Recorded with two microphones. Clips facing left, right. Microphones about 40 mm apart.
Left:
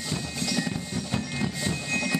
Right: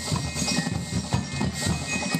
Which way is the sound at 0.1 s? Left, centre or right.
Centre.